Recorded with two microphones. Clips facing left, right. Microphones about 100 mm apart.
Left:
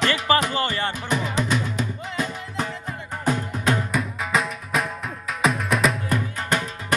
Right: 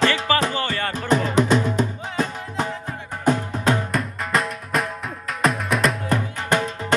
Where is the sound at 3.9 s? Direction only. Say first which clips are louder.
Right 1 dB; centre (ahead or behind).